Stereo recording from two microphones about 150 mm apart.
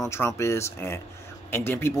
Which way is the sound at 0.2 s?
20° left (ahead or behind).